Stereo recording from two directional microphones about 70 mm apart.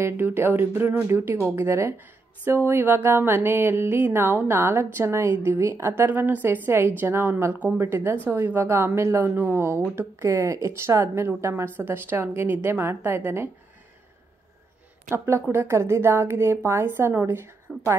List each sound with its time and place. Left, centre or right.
0.0 s music: right
5.9 s music: right
7.5 s speech: right
7.8 s music: right
9.2 s speech: right
9.9 s music: right
15.0 s music: right